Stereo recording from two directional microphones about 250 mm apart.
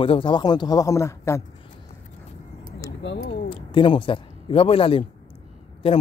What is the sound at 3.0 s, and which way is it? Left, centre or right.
Speech, left.